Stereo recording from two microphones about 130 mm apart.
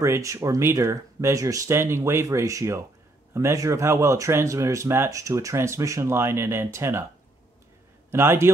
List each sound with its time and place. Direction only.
0.0 s speech: 20° right (ahead or behind)
8.1 s speech: 20° right (ahead or behind)